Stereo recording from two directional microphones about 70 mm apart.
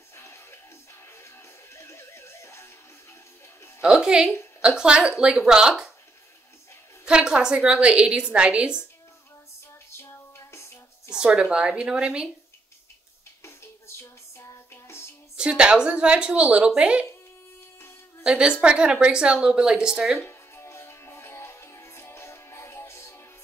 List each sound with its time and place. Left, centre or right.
0.1 s music: left
3.8 s a woman's voice: centre
7.1 s a woman's voice: centre
9.8 s a sound: left
11.4 s a woman's voice: centre
13.4 s music: left
15.3 s a woman's voice: centre
18.2 s a woman's voice: centre
20.2 s music: left